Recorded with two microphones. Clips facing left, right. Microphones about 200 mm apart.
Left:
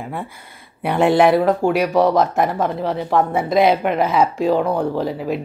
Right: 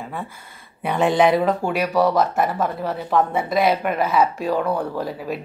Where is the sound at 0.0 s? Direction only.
15° left (ahead or behind).